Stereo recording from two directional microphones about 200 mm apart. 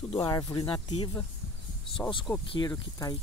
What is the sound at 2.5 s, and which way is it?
Speech, 20° left (ahead or behind).